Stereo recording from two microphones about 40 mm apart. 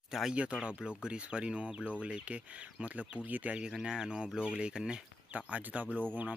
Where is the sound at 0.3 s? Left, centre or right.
Right.